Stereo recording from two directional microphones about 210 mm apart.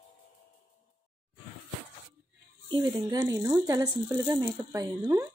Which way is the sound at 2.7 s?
20° right (ahead or behind).